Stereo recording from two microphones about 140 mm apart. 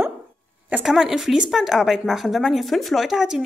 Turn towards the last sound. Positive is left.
turn(degrees=-5)  # may be behind; listen again after turning